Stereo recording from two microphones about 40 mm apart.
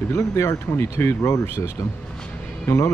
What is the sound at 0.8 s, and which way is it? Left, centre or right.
Speech, left.